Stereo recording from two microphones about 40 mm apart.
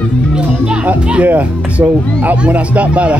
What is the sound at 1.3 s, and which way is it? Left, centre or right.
Speech, right.